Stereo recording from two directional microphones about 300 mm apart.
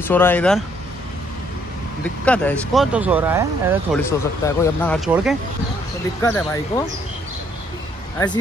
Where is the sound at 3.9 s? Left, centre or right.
Centre.